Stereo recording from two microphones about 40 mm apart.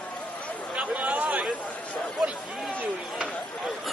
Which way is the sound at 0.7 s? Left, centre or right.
Right.